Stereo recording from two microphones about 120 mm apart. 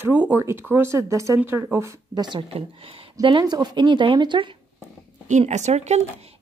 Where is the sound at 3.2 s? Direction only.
40° right (ahead or behind).